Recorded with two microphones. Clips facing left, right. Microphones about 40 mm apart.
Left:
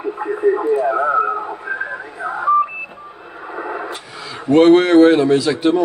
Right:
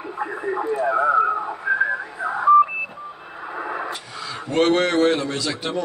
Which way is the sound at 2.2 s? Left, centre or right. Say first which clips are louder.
Even; centre.